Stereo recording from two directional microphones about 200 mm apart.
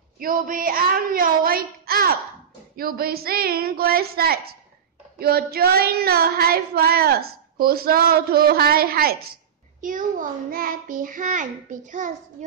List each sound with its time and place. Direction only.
0.2 s child singing: 45° right (ahead or behind)
12.4 s a child's voice: 35° right (ahead or behind)